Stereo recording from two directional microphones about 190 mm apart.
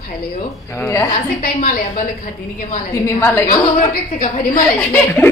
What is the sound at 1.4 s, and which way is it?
Speech, 45° left (ahead or behind).